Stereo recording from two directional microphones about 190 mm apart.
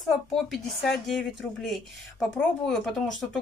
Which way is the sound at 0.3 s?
Centre (ahead or behind).